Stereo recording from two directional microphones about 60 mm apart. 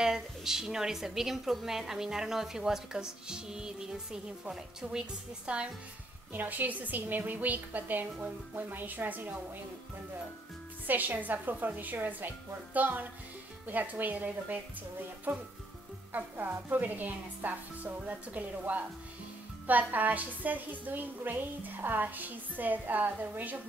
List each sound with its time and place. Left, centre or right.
0.0 s a woman's voice: centre
6.3 s a woman's voice: right
10.9 s a woman's voice: right